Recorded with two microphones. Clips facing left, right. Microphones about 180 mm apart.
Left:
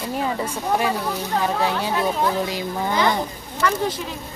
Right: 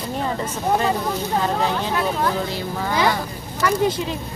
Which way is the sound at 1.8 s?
15° left (ahead or behind).